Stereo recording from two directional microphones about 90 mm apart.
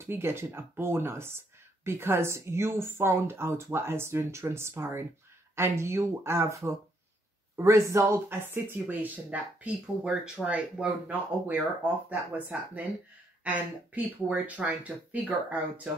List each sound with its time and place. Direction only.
0.0 s speech: 25° right (ahead or behind)